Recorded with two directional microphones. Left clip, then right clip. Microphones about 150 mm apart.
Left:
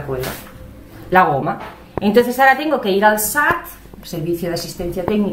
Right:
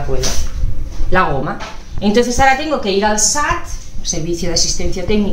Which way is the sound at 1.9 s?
20° left (ahead or behind).